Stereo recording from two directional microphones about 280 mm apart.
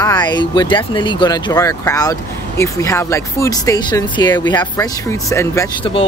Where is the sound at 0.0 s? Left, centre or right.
Centre.